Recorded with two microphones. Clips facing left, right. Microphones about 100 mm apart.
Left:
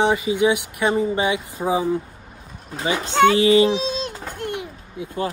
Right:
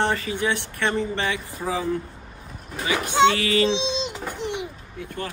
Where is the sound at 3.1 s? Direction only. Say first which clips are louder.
Left 2 dB; 15° right (ahead or behind).